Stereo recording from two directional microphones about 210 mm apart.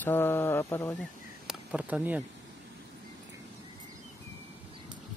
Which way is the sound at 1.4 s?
5° right (ahead or behind).